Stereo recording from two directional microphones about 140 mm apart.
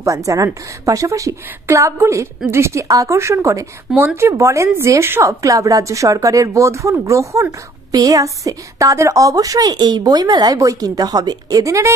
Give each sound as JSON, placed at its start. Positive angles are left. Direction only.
{"t": 0.0, "sound": "a woman's voice", "side_deg": -25}